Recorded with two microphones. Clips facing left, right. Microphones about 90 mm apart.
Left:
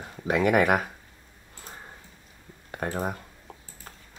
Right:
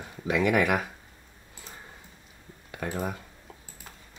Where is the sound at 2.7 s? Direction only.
40° left (ahead or behind).